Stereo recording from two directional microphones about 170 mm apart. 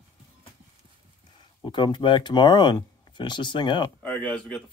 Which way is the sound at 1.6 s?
25° left (ahead or behind).